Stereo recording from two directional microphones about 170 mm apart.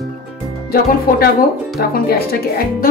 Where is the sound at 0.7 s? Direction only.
60° left (ahead or behind).